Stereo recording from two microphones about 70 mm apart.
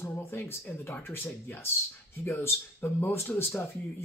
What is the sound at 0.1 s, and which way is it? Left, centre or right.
Speech, left.